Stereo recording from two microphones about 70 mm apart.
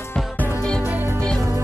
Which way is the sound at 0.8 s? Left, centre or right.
Right.